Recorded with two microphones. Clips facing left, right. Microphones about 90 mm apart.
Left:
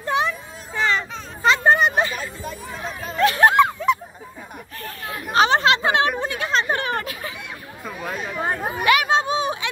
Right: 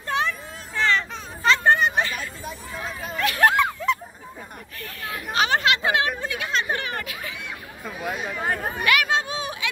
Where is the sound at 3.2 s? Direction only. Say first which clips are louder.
Left 5 dB; 25° left (ahead or behind).